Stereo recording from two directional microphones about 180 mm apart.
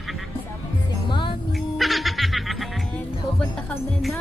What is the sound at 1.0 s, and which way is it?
Music, 25° left (ahead or behind).